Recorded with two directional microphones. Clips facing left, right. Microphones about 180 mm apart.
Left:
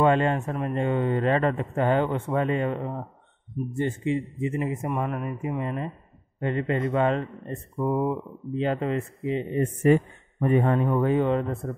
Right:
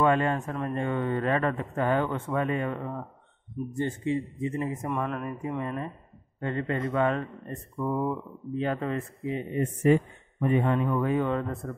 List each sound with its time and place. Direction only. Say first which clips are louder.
0.0 s a man's voice: left 3 dB; 25° left (ahead or behind)
9.9 s speech: left 2 dB; 55° left (ahead or behind)
10.4 s a man's voice: left 3 dB; 45° left (ahead or behind); by 11.7 s 25° left (ahead or behind)